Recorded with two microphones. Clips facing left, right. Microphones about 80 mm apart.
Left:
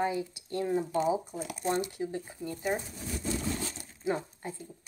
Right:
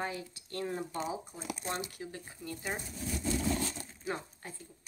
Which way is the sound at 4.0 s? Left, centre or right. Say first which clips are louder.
Left 7 dB; centre.